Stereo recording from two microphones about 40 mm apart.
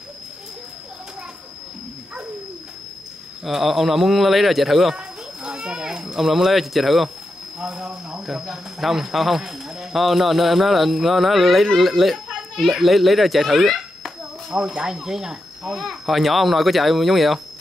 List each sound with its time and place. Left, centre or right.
3.4 s speech: centre
4.9 s children playing: centre
6.1 s speech: centre
7.5 s speech: centre
9.4 s a sound: centre
9.9 s speech: centre
12.3 s cricket: centre
12.7 s speech: centre
14.8 s speech: centre